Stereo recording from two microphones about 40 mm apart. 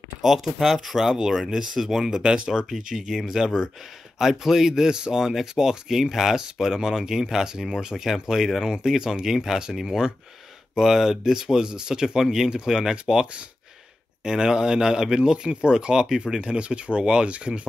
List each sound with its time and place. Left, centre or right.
0.2 s speech: centre
14.2 s speech: centre